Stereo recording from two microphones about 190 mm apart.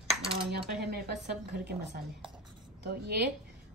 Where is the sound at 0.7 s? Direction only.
55° right (ahead or behind).